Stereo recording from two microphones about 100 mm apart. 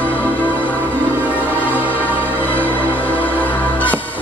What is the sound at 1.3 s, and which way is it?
Music, 15° right (ahead or behind).